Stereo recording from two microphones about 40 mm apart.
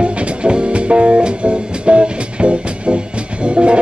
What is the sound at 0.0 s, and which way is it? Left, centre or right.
Music, right.